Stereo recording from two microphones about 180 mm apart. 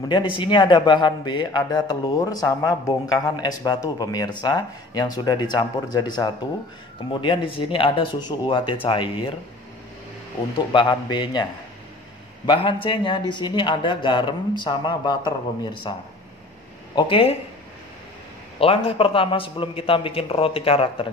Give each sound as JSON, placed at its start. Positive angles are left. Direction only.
{"t": 0.4, "sound": "speech", "side_deg": 25}
{"t": 10.7, "sound": "speech", "side_deg": 25}
{"t": 12.4, "sound": "speech", "side_deg": 30}
{"t": 16.9, "sound": "a man's voice", "side_deg": 30}
{"t": 18.6, "sound": "a man's voice", "side_deg": 30}